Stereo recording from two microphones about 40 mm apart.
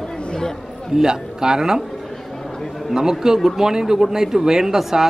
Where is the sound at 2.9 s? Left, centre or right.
Centre.